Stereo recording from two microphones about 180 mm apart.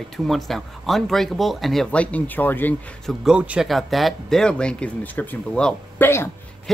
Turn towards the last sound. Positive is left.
turn(degrees=10)  # may be behind; listen again after turning